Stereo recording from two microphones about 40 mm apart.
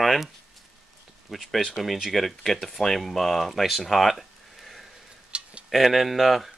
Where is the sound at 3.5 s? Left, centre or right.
Centre.